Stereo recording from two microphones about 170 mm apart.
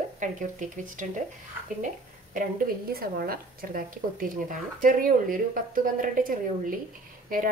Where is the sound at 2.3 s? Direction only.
60° right (ahead or behind).